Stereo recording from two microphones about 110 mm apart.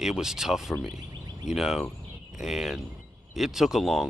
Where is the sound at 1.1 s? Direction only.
40° right (ahead or behind).